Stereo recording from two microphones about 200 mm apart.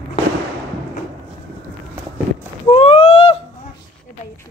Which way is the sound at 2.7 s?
25° left (ahead or behind).